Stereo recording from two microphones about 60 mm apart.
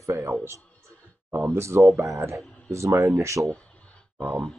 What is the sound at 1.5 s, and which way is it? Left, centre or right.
Speech, right.